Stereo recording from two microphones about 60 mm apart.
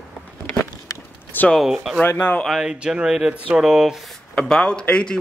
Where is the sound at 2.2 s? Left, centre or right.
Left.